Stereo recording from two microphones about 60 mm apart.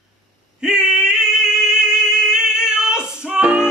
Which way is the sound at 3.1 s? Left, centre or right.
Centre.